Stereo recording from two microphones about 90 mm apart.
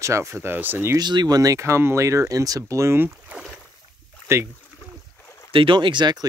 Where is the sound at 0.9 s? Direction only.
50° right (ahead or behind); by 3.4 s 25° right (ahead or behind).